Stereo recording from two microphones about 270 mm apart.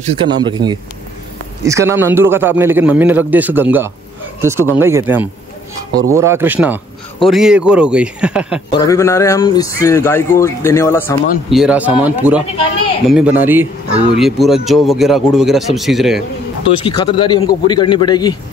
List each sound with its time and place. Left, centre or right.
0.0 s a man's voice: centre
8.7 s a man's voice: centre
16.6 s speech: centre